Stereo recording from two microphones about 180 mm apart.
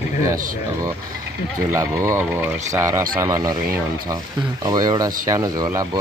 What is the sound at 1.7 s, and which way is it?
Speech, 15° right (ahead or behind).